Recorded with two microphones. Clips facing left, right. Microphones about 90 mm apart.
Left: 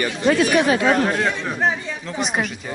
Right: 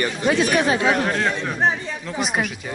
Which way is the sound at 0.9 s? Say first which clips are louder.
Left 2 dB; 5° left (ahead or behind).